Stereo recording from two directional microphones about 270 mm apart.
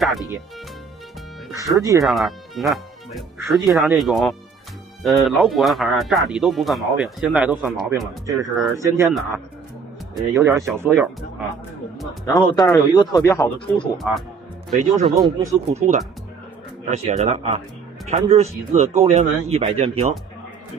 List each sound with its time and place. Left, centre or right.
1.5 s speech: centre
2.0 s speech: centre
10.1 s speech: centre
12.3 s a man's voice: centre
13.9 s speech: centre
15.0 s speech: centre
16.9 s speech: right